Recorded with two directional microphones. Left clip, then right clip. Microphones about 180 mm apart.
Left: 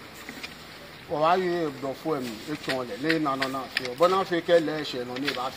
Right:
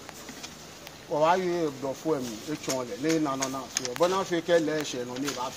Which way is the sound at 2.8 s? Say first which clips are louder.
Even; 20° right (ahead or behind).